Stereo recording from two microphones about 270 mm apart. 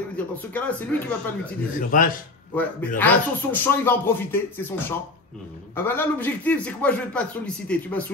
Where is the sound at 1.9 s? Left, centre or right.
Left.